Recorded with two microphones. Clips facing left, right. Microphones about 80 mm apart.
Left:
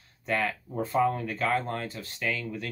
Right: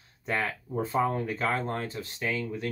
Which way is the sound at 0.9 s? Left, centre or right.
Right.